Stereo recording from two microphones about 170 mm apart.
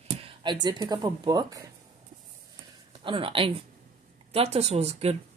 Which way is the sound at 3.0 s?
30° right (ahead or behind).